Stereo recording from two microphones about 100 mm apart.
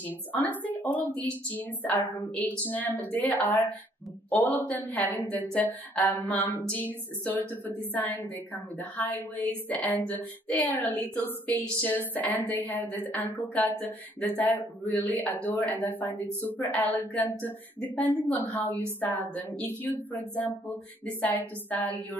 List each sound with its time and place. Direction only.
0.0 s a woman's voice: 15° left (ahead or behind)